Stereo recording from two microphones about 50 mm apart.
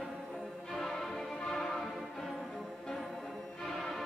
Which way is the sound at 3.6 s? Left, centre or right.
Centre.